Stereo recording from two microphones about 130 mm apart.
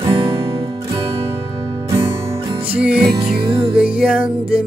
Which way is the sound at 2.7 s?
10° right (ahead or behind).